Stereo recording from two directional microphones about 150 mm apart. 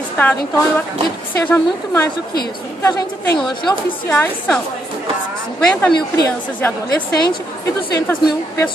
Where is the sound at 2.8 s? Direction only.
20° left (ahead or behind).